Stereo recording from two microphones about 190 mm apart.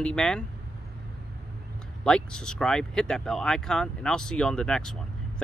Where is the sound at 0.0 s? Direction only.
5° left (ahead or behind).